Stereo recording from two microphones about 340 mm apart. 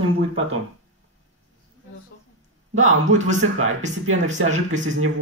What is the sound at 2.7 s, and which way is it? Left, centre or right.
Speech, right.